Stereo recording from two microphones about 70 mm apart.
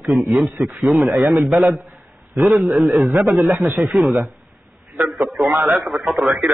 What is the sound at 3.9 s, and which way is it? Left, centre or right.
Speech, centre.